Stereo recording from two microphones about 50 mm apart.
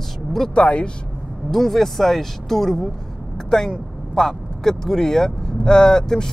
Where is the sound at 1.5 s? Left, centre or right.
Centre.